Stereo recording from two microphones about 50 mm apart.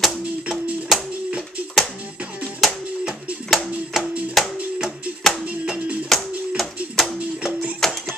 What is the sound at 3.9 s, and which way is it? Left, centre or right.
Music, centre.